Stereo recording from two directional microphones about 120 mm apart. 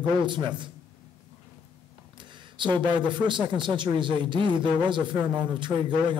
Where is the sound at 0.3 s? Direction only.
40° right (ahead or behind).